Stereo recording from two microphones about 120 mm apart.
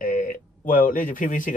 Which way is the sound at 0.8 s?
90° left.